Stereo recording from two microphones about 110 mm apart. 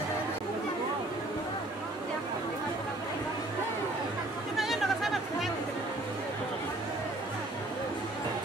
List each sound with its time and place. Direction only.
4.6 s chatter: centre (ahead or behind)